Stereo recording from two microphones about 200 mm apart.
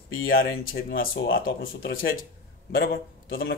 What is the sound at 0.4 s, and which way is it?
Speech, 45° left (ahead or behind).